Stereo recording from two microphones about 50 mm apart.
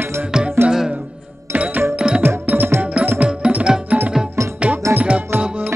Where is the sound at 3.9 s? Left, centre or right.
Right.